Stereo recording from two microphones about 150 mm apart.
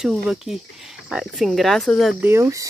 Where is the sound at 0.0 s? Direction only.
5° right (ahead or behind).